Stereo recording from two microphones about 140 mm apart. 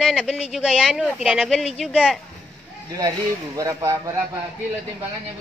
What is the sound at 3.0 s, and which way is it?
Speech, 25° right (ahead or behind).